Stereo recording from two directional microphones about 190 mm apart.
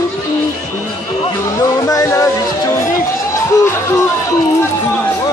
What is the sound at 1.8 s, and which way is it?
Speech, 15° left (ahead or behind).